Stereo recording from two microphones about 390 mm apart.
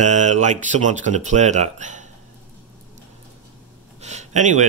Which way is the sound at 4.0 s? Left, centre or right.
Centre.